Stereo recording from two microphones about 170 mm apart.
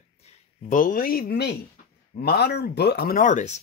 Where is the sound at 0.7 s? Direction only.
55° left (ahead or behind).